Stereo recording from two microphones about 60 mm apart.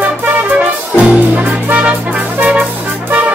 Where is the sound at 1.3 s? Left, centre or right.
Right.